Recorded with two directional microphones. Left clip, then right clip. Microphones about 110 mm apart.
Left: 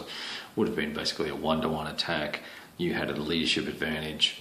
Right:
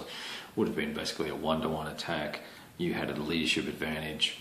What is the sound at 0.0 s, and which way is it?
Speech, 15° left (ahead or behind).